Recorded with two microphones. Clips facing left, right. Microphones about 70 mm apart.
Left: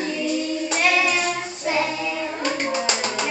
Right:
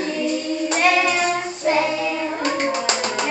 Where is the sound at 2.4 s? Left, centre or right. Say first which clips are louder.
Right 2 dB; centre.